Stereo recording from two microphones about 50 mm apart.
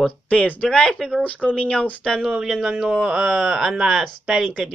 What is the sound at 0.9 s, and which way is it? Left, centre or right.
Speech, centre.